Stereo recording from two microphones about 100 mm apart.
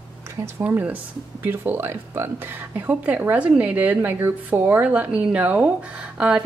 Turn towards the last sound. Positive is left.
turn(degrees=-10)  # may be behind; listen again after turning